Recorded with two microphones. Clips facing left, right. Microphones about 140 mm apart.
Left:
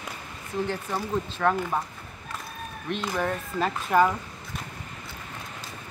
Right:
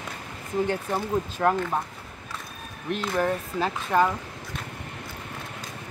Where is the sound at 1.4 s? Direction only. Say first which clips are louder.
Right 1 dB; 25° right (ahead or behind).